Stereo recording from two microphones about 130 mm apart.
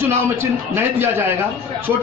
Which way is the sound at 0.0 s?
20° right (ahead or behind).